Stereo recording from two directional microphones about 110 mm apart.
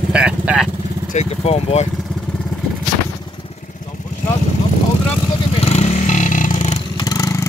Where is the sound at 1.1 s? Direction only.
70° left (ahead or behind).